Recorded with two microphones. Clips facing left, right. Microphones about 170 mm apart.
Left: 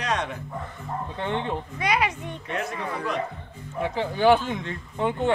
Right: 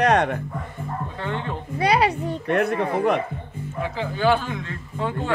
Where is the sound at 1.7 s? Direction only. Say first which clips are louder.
Right 7 dB; 35° right (ahead or behind).